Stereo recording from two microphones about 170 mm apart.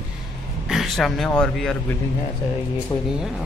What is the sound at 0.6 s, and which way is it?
A man's voice, centre (ahead or behind).